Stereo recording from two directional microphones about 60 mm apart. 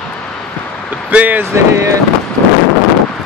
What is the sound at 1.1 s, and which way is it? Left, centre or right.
Speech, right.